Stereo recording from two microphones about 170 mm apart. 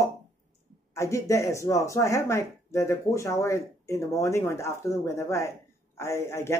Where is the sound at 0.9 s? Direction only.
20° left (ahead or behind).